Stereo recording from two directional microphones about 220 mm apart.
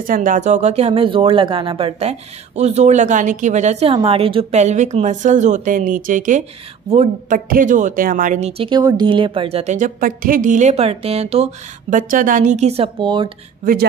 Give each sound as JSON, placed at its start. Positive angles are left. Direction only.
{"t": 0.0, "sound": "speech", "side_deg": -40}